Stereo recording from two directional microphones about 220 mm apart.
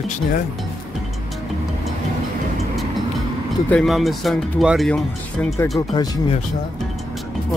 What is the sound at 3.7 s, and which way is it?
Speech, centre (ahead or behind).